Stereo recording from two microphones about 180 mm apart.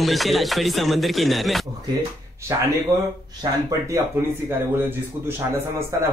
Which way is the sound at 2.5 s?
15° right (ahead or behind).